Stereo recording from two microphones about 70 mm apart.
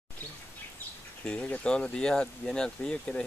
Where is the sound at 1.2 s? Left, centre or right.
Centre.